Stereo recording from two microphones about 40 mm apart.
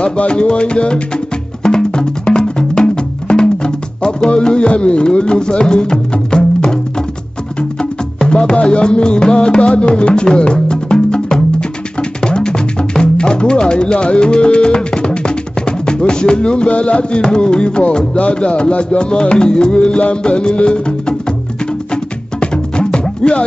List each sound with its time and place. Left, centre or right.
0.0 s music: left
8.3 s music: left
12.0 s speech: left
19.1 s music: left